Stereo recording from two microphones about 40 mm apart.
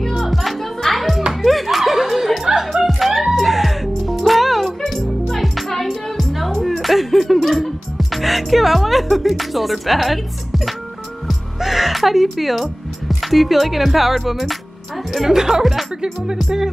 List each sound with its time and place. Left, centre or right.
0.1 s music: centre
13.2 s speech: centre